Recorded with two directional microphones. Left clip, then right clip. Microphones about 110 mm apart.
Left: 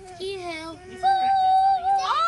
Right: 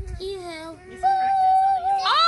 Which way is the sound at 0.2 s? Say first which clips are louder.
Even; 40° left (ahead or behind).